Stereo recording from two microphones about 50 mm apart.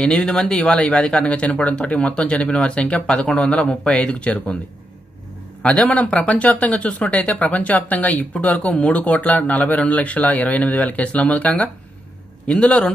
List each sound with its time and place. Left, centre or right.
0.0 s speech: centre
5.6 s speech: left